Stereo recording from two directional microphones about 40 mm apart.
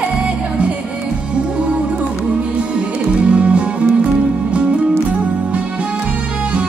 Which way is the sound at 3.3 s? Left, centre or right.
Right.